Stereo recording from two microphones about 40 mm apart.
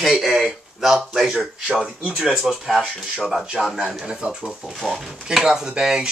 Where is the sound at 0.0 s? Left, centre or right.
Centre.